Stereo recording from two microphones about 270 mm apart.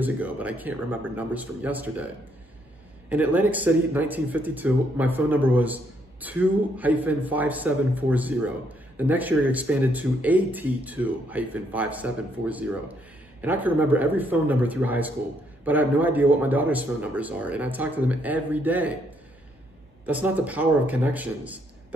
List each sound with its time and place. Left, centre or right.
0.0 s speech: centre
3.1 s speech: centre
20.1 s speech: centre